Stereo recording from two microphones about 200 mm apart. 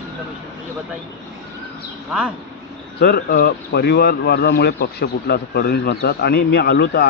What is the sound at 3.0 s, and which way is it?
Speech, 50° left (ahead or behind).